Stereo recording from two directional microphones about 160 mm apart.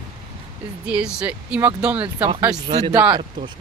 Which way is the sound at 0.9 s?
5° right (ahead or behind).